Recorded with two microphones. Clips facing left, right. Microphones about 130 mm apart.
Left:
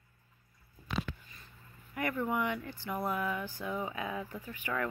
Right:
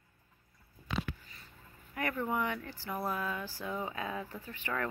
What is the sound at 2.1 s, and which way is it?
Speech, 10° left (ahead or behind).